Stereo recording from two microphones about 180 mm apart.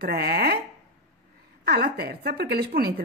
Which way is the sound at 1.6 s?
60° right (ahead or behind).